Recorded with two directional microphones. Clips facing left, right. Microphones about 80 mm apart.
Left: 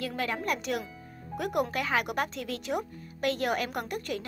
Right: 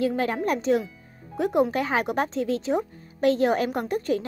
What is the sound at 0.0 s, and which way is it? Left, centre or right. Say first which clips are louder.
A woman's voice: right 8 dB; right.